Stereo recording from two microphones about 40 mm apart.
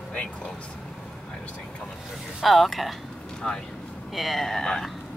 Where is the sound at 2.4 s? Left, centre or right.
Centre.